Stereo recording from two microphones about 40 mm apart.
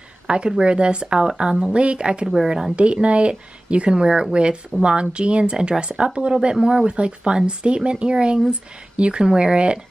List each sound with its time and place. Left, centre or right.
0.3 s speech: right
2.2 s a woman's voice: centre
2.7 s speech: right